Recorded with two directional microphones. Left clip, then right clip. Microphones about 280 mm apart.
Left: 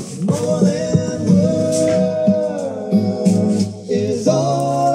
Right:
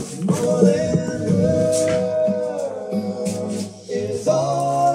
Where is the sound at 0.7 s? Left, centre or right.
Left.